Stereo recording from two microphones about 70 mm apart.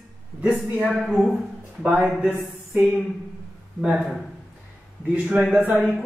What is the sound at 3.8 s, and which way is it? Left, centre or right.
Speech, centre.